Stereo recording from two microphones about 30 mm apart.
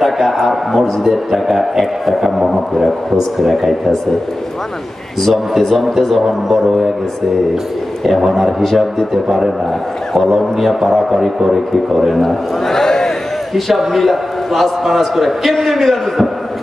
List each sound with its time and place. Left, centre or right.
0.0 s a man's voice: centre
5.2 s a man's voice: centre
6.2 s a man's voice: centre
8.2 s a man's voice: centre
11.1 s a man's voice: centre
12.2 s a man's voice: centre
12.8 s a sound: centre
13.7 s a man's voice: centre